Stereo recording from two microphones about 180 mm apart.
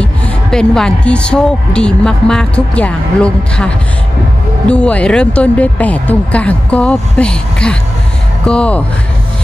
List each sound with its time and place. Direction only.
0.0 s a woman's voice: 5° left (ahead or behind)